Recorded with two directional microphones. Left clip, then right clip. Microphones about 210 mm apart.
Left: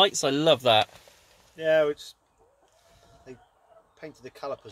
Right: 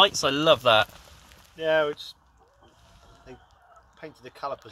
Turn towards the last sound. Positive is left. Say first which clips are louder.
# right 1 dB
turn(degrees=50)  # may be behind; listen again after turning